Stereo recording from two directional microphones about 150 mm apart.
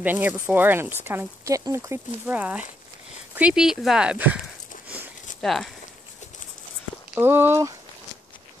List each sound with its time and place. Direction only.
0.0 s speech: 10° right (ahead or behind)
5.4 s speech: centre (ahead or behind)
7.2 s speech: 15° right (ahead or behind)